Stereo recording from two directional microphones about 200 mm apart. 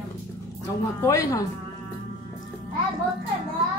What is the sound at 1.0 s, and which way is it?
Speech, 15° left (ahead or behind).